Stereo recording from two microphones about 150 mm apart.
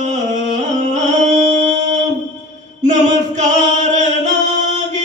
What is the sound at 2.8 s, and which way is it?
Singing, 50° right (ahead or behind).